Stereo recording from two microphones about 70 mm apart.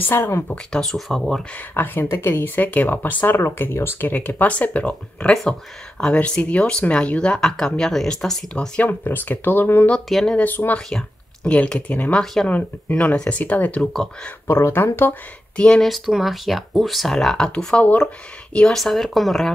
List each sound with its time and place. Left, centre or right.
0.0 s speech: left
0.7 s speech: centre
1.7 s speech: left; by 8.6 s centre
8.7 s speech: left
10.0 s speech: centre
10.3 s speech: left
14.5 s speech: left
15.5 s speech: centre
15.8 s speech: centre